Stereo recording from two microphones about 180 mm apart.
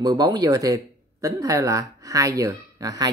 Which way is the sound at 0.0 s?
20° right (ahead or behind).